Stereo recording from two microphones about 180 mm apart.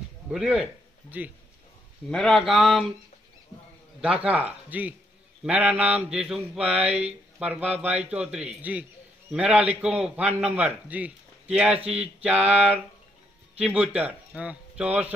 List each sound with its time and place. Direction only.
0.3 s a man's voice: 5° right (ahead or behind)
2.0 s speech: centre (ahead or behind)
4.0 s a man's voice: 5° right (ahead or behind)
6.9 s speech: 35° right (ahead or behind)
7.3 s a man's voice: 5° right (ahead or behind)